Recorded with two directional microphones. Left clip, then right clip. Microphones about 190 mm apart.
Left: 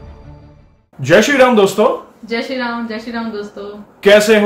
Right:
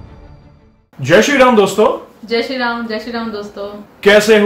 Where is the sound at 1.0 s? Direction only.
15° left (ahead or behind).